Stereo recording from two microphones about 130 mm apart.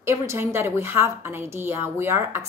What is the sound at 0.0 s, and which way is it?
A woman's voice, 20° right (ahead or behind).